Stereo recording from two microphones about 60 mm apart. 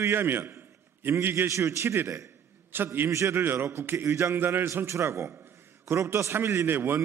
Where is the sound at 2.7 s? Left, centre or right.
Right.